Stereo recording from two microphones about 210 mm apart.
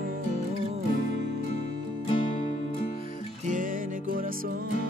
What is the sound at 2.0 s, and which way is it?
Music, 25° left (ahead or behind).